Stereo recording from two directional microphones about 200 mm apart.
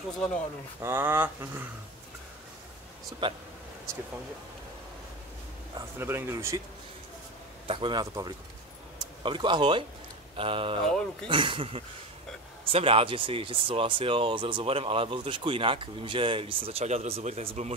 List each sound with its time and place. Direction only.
0.7 s speech: 10° right (ahead or behind)
3.2 s speech: 25° right (ahead or behind)
5.8 s speech: 10° right (ahead or behind)
7.6 s speech: 25° right (ahead or behind)
10.9 s speech: 5° left (ahead or behind)
11.2 s speech: 25° right (ahead or behind)